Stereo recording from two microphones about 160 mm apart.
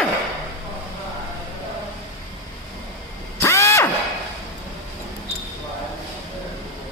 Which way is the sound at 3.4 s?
20° left (ahead or behind).